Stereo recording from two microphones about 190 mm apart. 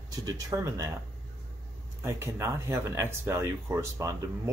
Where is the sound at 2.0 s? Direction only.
15° right (ahead or behind).